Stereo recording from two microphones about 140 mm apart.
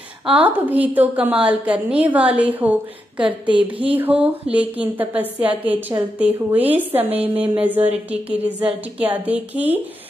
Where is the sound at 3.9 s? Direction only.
10° right (ahead or behind).